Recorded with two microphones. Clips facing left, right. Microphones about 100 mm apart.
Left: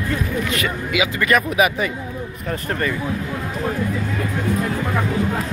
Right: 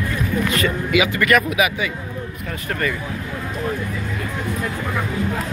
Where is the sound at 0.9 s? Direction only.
25° left (ahead or behind).